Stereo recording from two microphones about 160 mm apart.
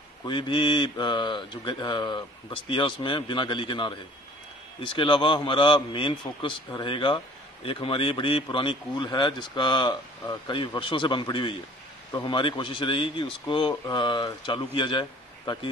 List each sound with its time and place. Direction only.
0.3 s speech: 30° left (ahead or behind)